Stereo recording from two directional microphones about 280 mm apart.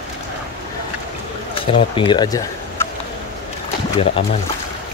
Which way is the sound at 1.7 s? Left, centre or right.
Centre.